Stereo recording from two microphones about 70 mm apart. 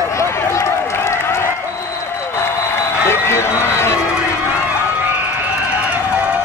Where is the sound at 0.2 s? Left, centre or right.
Left.